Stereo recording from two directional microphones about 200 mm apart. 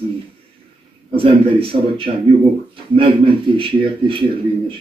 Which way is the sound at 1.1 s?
25° right (ahead or behind).